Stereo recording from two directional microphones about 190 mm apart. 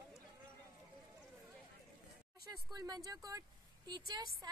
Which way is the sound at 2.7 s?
20° right (ahead or behind).